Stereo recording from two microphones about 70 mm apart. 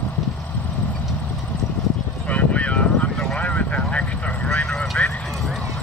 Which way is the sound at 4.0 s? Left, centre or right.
Centre.